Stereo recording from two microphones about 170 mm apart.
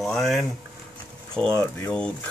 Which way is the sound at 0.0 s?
Centre (ahead or behind).